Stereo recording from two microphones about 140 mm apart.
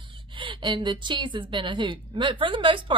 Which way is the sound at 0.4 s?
35° right (ahead or behind).